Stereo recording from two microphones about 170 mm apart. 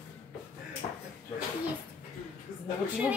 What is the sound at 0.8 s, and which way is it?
Speech, 25° left (ahead or behind).